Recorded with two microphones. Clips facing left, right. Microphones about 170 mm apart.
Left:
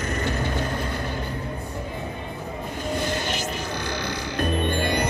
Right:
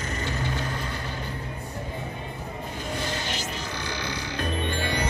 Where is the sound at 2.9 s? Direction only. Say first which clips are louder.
Left 5 dB; 50° left (ahead or behind).